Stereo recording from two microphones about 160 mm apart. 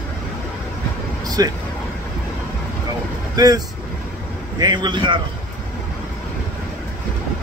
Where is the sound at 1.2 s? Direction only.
25° right (ahead or behind).